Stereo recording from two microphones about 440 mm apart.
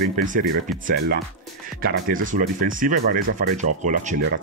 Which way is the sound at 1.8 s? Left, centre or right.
Centre.